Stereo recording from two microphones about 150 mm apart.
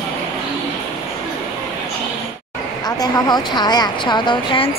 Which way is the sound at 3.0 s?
30° left (ahead or behind).